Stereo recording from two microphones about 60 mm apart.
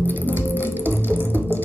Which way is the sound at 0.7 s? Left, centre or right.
Right.